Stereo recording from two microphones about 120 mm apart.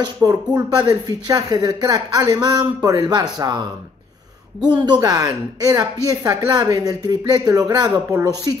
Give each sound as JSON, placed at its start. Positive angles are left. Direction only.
{"t": 0.0, "sound": "speech", "side_deg": -35}
{"t": 4.7, "sound": "speech", "side_deg": -40}